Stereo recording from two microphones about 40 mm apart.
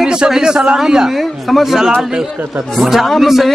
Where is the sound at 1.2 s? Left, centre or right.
Centre.